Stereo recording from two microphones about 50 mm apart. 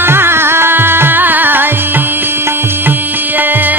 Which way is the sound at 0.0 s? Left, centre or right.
Right.